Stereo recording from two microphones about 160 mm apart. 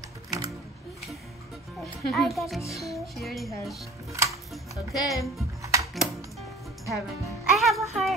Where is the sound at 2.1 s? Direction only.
Centre (ahead or behind).